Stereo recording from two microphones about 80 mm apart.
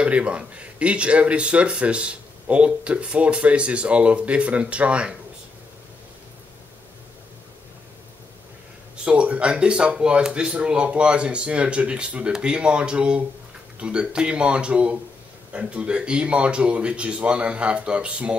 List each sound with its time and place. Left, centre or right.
0.0 s speech: centre
8.9 s speech: centre